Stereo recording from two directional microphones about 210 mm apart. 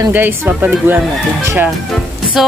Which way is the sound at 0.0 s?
10° right (ahead or behind).